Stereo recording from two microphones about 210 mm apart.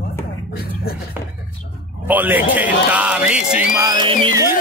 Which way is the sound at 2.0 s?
10° right (ahead or behind).